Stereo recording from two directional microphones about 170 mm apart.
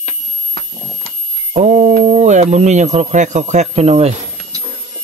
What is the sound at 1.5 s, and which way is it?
Speech, 40° right (ahead or behind).